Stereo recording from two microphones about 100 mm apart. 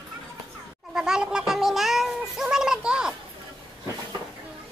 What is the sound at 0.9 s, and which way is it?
Cat, 5° right (ahead or behind).